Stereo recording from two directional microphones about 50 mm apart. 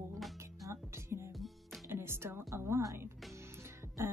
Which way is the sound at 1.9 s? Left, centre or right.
Right.